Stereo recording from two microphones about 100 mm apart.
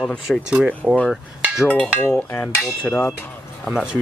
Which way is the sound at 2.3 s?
15° left (ahead or behind).